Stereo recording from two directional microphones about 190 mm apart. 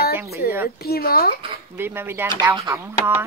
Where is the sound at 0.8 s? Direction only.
55° left (ahead or behind).